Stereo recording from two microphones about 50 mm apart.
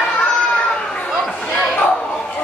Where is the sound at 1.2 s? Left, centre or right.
Left.